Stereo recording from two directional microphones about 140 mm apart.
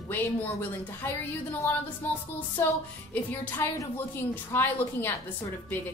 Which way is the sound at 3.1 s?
10° left (ahead or behind).